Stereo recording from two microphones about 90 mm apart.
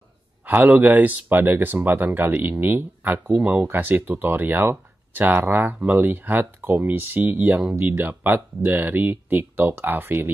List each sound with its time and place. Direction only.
0.5 s speech: 20° right (ahead or behind)